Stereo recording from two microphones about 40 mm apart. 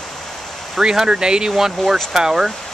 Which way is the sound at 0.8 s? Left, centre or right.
Centre.